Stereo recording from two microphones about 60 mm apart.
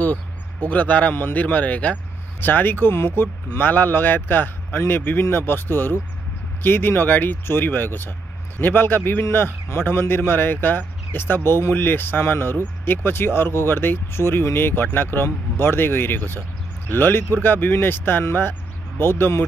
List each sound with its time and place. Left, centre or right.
0.0 s a man's voice: left